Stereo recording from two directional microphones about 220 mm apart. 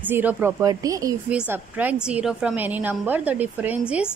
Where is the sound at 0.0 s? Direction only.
10° right (ahead or behind).